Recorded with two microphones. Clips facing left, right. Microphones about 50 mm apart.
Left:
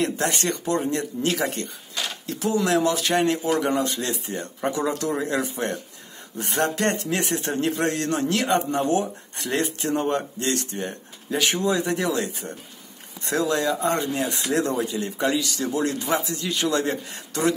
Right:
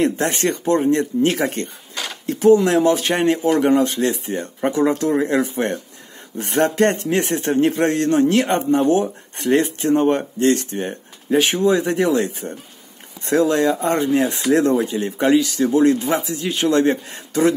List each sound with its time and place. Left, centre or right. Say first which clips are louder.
0.0 s speech: right 5 dB; right